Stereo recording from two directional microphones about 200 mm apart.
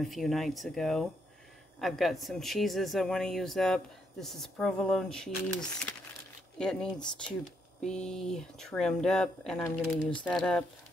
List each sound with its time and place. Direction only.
0.0 s speech: centre (ahead or behind)